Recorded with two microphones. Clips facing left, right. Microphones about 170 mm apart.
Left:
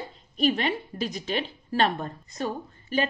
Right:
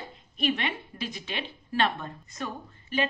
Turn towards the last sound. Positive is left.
turn(degrees=35)  # may be behind; listen again after turning